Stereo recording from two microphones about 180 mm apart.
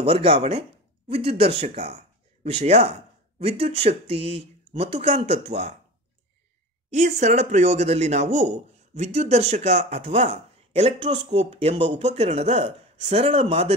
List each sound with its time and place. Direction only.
0.0 s speech: 35° right (ahead or behind)
6.9 s speech: 40° right (ahead or behind)